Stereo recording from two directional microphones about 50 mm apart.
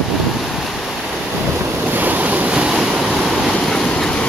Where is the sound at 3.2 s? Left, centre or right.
Centre.